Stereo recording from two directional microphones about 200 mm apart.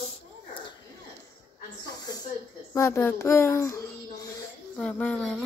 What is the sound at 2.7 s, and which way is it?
Speech, 15° left (ahead or behind).